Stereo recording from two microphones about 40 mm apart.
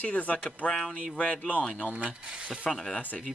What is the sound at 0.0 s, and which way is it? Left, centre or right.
Speech, left.